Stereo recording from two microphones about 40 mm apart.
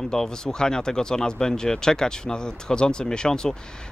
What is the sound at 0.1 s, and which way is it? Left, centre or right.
Speech, centre.